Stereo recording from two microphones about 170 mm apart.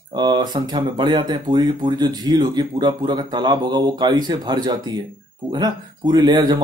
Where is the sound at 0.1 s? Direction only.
25° right (ahead or behind).